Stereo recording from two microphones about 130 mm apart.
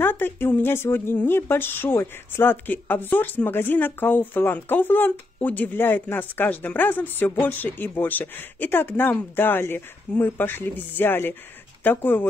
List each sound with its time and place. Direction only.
0.0 s speech: 15° left (ahead or behind)